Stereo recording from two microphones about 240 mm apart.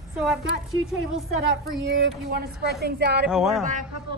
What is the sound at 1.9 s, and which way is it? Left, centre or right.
Speech, right.